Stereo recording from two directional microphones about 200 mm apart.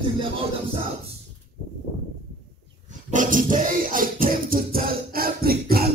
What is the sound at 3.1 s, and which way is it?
Dog, 40° right (ahead or behind).